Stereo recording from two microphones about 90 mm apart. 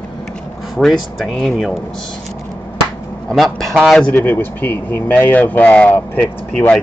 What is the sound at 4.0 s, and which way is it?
Speech, 20° left (ahead or behind).